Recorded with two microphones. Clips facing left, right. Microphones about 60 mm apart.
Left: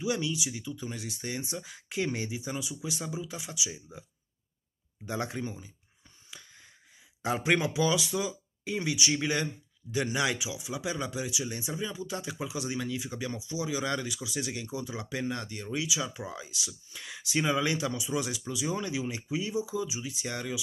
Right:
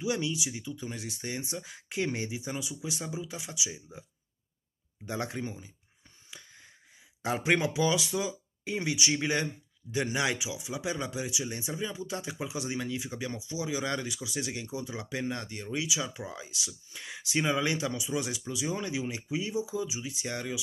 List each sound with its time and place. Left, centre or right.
0.0 s speech: centre
5.0 s speech: centre
7.2 s a man's voice: centre